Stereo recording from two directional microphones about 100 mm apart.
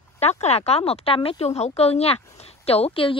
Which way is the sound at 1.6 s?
90° left.